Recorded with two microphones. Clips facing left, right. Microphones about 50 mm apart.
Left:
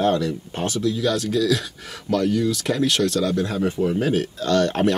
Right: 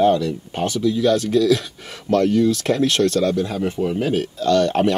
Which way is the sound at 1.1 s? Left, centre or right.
Right.